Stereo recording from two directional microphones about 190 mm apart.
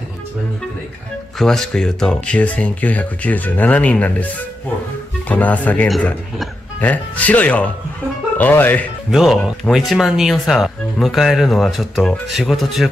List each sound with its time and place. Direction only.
1.4 s speech: 5° left (ahead or behind)
9.1 s speech: centre (ahead or behind)